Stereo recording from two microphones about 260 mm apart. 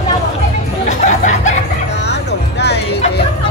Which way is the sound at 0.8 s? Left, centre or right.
Left.